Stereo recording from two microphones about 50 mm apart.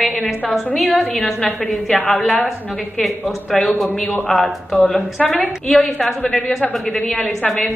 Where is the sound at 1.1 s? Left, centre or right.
Centre.